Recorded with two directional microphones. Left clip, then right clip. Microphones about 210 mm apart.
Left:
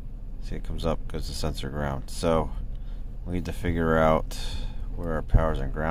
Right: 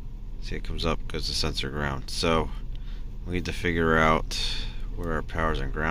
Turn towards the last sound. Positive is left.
turn(degrees=10)  # may be behind; listen again after turning